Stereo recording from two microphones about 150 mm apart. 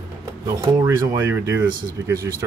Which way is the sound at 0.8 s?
15° right (ahead or behind).